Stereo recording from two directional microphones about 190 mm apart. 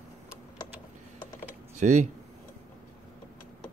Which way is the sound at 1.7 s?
40° right (ahead or behind).